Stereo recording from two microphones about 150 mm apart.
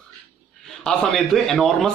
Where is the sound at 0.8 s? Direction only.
5° left (ahead or behind).